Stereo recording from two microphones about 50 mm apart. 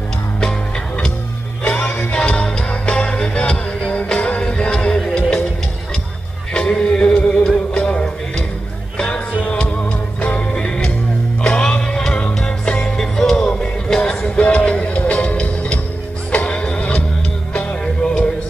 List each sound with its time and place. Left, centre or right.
2.0 s music: left
6.5 s music: left
10.5 s music: centre
14.3 s music: left